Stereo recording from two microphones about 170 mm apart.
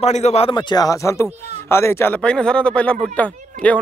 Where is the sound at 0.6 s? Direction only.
25° left (ahead or behind).